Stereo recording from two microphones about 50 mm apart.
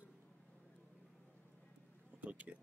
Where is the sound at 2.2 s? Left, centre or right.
Right.